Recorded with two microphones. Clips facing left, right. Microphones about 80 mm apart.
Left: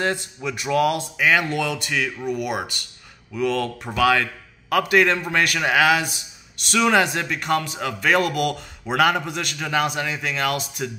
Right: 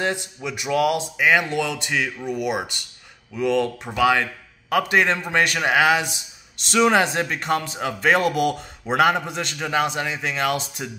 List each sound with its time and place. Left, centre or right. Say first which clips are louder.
0.0 s a man's voice: left 1 dB; centre